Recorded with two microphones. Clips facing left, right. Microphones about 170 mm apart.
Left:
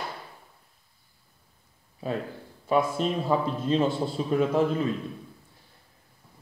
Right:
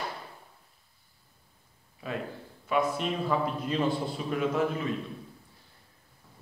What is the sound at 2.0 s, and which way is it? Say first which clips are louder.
A man's voice: left 4 dB; 35° left (ahead or behind).